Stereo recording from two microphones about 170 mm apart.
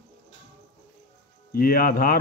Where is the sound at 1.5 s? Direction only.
60° left (ahead or behind).